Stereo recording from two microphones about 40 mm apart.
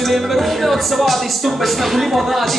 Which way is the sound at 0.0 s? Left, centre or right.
Centre.